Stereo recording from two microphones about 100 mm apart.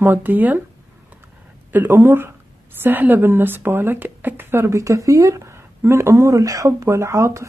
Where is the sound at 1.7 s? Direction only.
20° right (ahead or behind).